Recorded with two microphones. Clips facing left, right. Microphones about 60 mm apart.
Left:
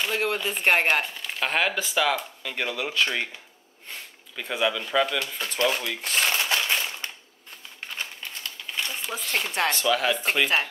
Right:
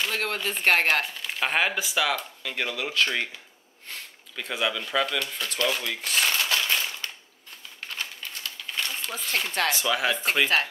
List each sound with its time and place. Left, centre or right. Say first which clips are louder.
0.0 s speech: left 2 dB; centre
1.2 s speech: even; centre
4.4 s speech: left 2 dB; centre
6.5 s crushing: left 1 dB; left
8.7 s a sound: left 1 dB; centre
9.2 s speech: even; centre
9.7 s speech: left 3 dB; centre